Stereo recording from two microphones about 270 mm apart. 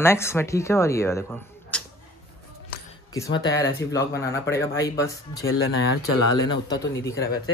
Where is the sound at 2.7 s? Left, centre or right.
Left.